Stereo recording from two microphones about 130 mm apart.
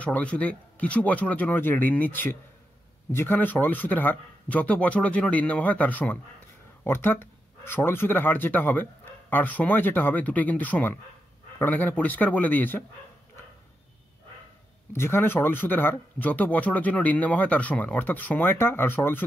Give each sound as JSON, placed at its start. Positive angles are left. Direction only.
{"t": 0.0, "sound": "speech", "side_deg": 10}
{"t": 14.9, "sound": "speech", "side_deg": 20}